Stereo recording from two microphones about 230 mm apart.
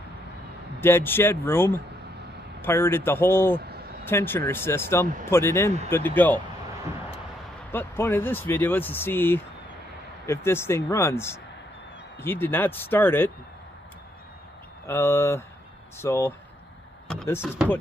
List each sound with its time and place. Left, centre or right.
0.7 s speech: centre
7.7 s speech: centre
14.9 s speech: centre